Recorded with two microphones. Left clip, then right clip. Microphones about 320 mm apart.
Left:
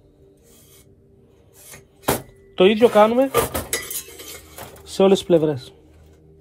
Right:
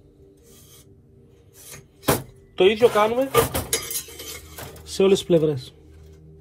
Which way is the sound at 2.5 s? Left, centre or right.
Left.